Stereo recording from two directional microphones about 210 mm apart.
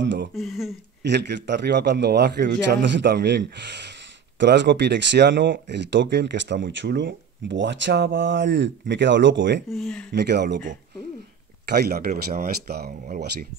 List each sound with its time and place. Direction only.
0.0 s a sound: 60° right (ahead or behind)
0.4 s speech: centre (ahead or behind)
1.0 s a man's voice: 55° right (ahead or behind)
9.7 s speech: centre (ahead or behind)
10.1 s a man's voice: 55° right (ahead or behind)
11.6 s a man's voice: 50° right (ahead or behind)